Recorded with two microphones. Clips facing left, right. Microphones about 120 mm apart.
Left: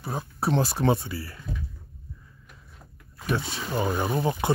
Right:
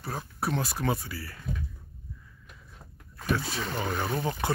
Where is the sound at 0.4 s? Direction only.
30° left (ahead or behind).